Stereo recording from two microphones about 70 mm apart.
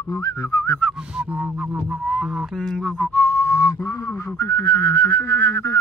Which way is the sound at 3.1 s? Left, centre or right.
Left.